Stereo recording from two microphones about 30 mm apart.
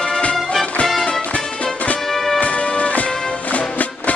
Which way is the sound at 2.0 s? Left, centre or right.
Centre.